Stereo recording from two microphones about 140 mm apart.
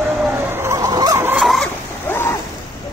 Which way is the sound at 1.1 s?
15° right (ahead or behind).